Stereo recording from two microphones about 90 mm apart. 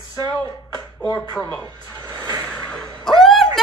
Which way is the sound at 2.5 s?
15° left (ahead or behind).